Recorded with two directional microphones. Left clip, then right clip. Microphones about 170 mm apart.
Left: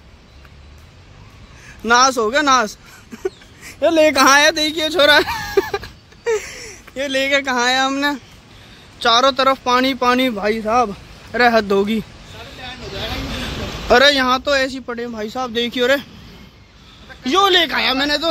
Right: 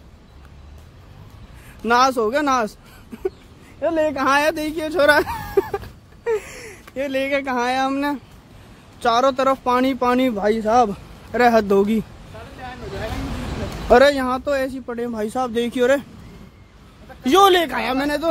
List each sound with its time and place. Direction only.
1.9 s speech: 5° right (ahead or behind)
3.8 s a man's voice: 35° left (ahead or behind)
4.4 s a sound: centre (ahead or behind)
6.5 s a sound: 15° right (ahead or behind)
7.1 s speech: 5° right (ahead or behind)
10.5 s speech: 20° right (ahead or behind)
13.8 s speech: 5° right (ahead or behind)
15.1 s speech: 25° right (ahead or behind)
17.2 s speech: 40° right (ahead or behind)
17.6 s speech: 5° right (ahead or behind)